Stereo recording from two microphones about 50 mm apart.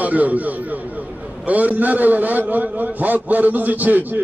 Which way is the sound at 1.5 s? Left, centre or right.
Right.